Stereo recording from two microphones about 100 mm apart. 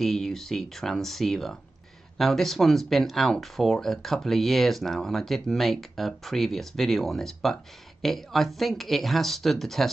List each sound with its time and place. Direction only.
0.0 s speech: 5° left (ahead or behind)